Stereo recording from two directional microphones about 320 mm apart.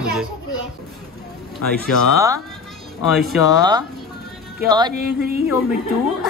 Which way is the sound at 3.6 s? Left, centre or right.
Centre.